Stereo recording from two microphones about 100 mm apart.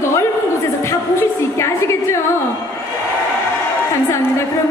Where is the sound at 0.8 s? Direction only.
30° left (ahead or behind).